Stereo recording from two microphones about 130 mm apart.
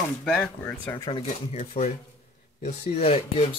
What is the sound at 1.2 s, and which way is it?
Speech, 65° left (ahead or behind).